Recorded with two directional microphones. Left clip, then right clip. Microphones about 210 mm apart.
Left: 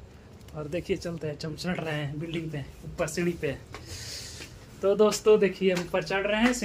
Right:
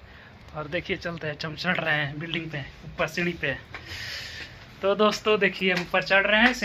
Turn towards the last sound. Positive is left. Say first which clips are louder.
# right 6 dB
turn(degrees=0)  # may be behind; listen again after turning